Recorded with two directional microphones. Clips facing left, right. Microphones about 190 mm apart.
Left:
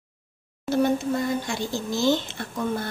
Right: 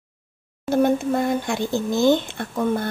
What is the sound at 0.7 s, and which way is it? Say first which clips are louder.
A woman's voice: right 3 dB; 55° right (ahead or behind).